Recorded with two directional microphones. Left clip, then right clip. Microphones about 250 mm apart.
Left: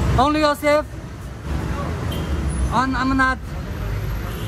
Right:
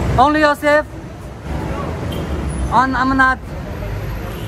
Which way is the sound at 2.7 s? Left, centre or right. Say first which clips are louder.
Right 6 dB; centre.